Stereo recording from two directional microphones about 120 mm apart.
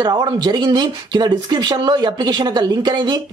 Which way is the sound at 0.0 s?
35° right (ahead or behind).